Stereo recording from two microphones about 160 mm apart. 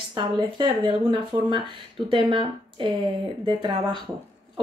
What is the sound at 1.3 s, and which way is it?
Speech, 15° right (ahead or behind).